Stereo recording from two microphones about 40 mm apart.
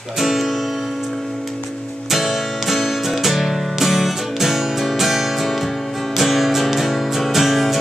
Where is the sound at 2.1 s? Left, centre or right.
Centre.